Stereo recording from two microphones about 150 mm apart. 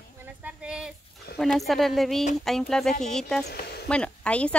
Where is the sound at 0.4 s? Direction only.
5° right (ahead or behind).